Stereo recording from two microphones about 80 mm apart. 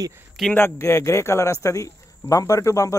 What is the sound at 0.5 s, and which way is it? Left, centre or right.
Speech, left.